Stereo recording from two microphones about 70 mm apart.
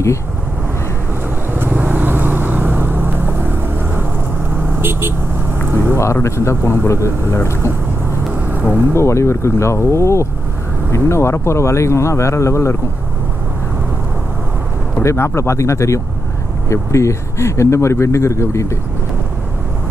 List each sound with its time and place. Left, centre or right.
1.5 s vehicle: right
4.7 s speech: right
6.2 s speech: left
8.5 s vehicle: right
8.9 s speech: left
15.0 s speech: left